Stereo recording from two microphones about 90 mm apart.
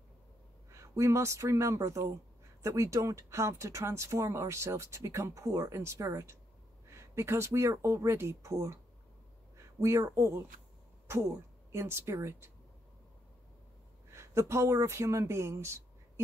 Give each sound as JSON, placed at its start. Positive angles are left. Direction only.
{"t": 0.7, "sound": "speech", "side_deg": -35}
{"t": 11.7, "sound": "speech", "side_deg": -30}
{"t": 14.1, "sound": "speech", "side_deg": -30}